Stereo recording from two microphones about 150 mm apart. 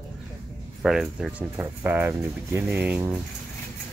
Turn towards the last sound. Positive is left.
turn(degrees=-10)  # may be behind; listen again after turning